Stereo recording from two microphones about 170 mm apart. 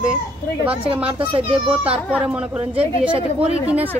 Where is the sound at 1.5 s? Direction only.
5° right (ahead or behind).